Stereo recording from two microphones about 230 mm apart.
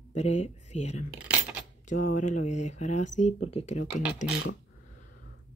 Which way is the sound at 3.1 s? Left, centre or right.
Left.